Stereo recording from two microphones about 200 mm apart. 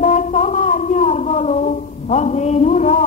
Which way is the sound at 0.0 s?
35° left (ahead or behind).